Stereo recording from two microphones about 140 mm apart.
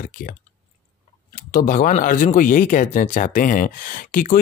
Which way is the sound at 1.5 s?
80° left.